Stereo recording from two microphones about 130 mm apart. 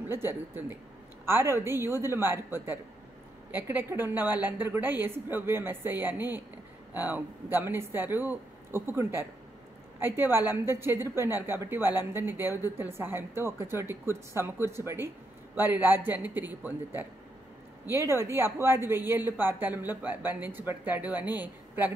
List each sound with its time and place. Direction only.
0.1 s a woman's voice: 20° right (ahead or behind)